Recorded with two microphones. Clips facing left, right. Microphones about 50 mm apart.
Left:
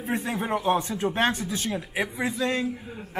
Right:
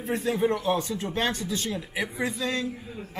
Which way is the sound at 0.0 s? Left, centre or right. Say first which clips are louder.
Right 3 dB; left.